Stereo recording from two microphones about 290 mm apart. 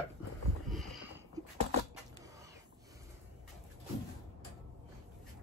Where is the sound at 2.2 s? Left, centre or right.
Centre.